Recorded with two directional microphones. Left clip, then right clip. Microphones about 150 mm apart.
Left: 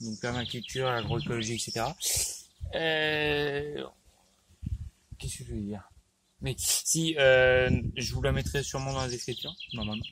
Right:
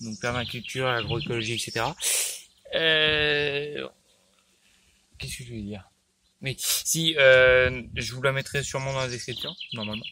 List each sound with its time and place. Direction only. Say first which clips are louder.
0.2 s speech: right 5 dB; 25° right (ahead or behind)
2.7 s speech: right 6 dB; 10° right (ahead or behind)
5.1 s speech: right 4 dB; 5° right (ahead or behind)